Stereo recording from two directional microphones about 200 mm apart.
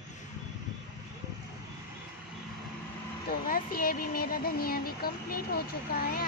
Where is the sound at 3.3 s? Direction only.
45° left (ahead or behind).